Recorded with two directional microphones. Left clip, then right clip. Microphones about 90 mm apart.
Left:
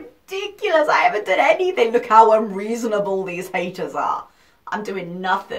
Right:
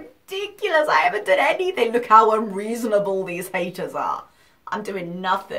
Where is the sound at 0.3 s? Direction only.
30° right (ahead or behind).